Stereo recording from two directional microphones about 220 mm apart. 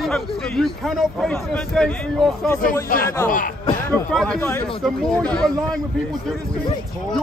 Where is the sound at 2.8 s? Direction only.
40° left (ahead or behind).